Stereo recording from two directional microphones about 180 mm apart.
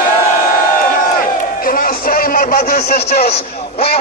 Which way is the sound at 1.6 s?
55° left (ahead or behind).